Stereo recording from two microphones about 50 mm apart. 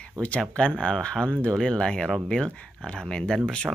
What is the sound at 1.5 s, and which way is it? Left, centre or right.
Speech, centre.